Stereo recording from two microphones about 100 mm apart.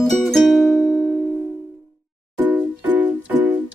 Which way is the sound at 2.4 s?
15° right (ahead or behind).